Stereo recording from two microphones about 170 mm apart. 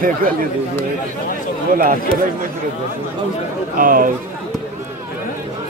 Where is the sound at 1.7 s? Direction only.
55° right (ahead or behind).